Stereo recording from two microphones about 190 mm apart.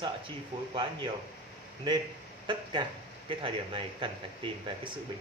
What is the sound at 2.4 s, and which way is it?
A man's voice, 25° right (ahead or behind).